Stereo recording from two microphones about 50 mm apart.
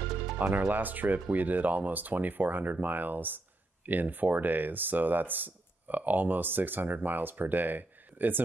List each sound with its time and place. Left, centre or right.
0.6 s speech: right